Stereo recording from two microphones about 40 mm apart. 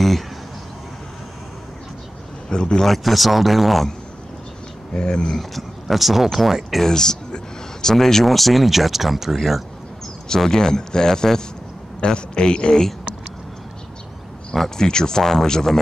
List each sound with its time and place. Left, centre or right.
2.5 s a man's voice: left
2.8 s speech: centre
4.9 s a man's voice: centre
5.4 s speech: centre
6.8 s a sound: centre
7.9 s speech: centre
10.2 s a man's voice: centre
14.5 s speech: centre